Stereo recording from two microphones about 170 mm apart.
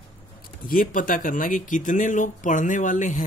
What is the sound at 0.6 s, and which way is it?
Speech, 55° left (ahead or behind).